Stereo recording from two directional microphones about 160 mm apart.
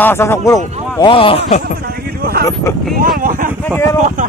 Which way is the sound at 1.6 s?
75° right (ahead or behind).